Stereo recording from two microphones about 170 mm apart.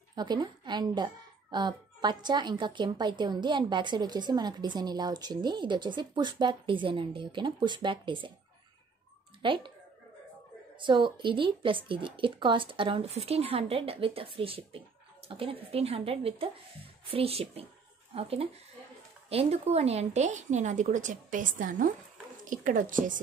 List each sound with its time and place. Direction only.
0.1 s speech: 25° right (ahead or behind)
9.4 s speech: 30° right (ahead or behind)
10.8 s a woman's voice: 30° right (ahead or behind); by 23.2 s 50° right (ahead or behind)